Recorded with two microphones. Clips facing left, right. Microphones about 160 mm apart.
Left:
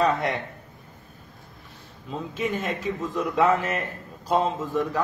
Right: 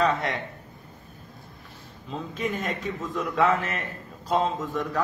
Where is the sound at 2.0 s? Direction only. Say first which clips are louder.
Left 2 dB; 5° left (ahead or behind).